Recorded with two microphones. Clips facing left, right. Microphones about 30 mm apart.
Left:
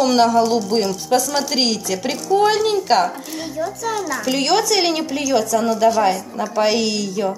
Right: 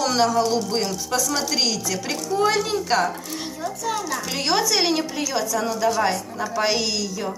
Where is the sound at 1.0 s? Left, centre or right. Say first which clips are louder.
Left 5 dB; left.